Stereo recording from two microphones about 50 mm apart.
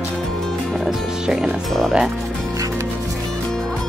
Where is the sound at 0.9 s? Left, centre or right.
Centre.